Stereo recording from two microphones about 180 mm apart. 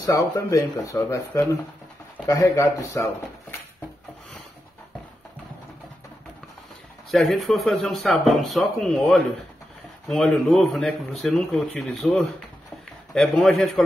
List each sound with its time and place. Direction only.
0.0 s speech: 15° left (ahead or behind)
7.1 s speech: centre (ahead or behind)